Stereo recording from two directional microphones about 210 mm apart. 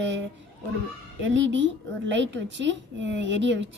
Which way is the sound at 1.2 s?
65° right (ahead or behind).